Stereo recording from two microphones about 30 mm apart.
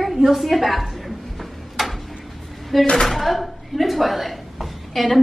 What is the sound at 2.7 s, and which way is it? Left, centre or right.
Speech, centre.